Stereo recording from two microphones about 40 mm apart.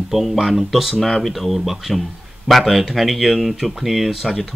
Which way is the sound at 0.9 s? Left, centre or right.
Centre.